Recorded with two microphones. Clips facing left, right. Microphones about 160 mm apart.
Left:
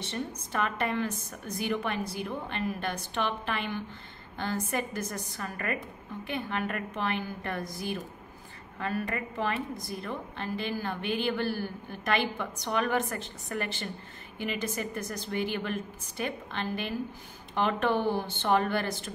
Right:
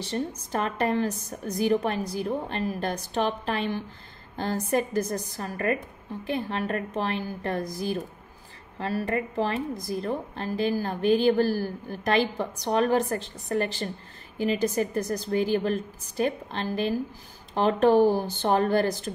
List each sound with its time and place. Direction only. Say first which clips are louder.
0.0 s a woman's voice: right 5 dB; 35° right (ahead or behind)